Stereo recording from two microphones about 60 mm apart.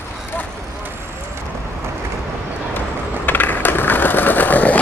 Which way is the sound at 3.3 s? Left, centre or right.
Left.